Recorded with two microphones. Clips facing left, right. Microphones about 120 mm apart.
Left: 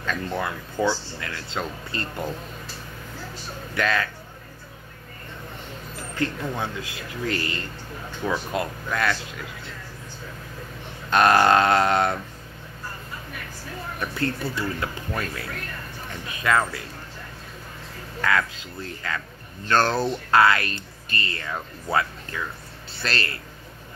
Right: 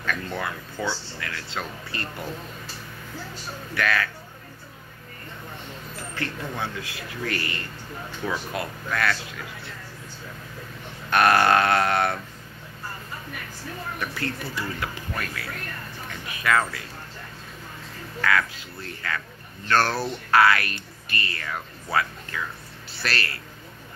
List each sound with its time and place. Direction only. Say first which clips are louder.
0.0 s speech: left 2 dB; 20° left (ahead or behind)
3.7 s speech: left 1 dB; 20° left (ahead or behind)
6.1 s speech: left 5 dB; 20° left (ahead or behind)
11.1 s speech: left 2 dB; 25° left (ahead or behind)
13.9 s speech: left 5 dB; 25° left (ahead or behind)
16.4 s speech: left 1 dB; 25° left (ahead or behind)
18.2 s speech: even; 25° left (ahead or behind)
23.0 s speech: left 1 dB; 25° left (ahead or behind)